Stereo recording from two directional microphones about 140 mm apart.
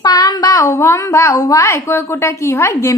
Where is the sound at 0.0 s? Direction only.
30° left (ahead or behind).